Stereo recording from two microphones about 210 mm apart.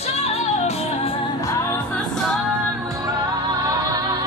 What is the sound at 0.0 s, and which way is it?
Music, 30° left (ahead or behind).